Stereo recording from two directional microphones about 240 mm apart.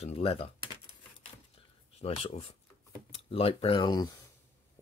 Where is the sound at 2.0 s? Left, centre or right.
Left.